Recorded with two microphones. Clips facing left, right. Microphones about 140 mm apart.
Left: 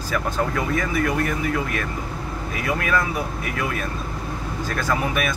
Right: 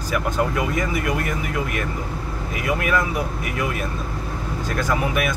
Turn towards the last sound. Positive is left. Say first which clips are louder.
# right 1 dB
turn(degrees=-15)  # may be behind; listen again after turning